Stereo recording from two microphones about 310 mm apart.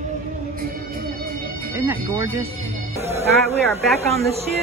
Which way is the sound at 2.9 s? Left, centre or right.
Centre.